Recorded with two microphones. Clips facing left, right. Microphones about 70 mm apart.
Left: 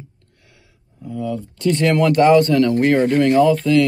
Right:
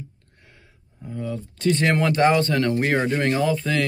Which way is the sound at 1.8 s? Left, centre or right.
Right.